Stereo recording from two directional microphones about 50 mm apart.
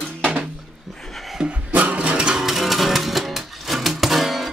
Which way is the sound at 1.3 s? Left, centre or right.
Centre.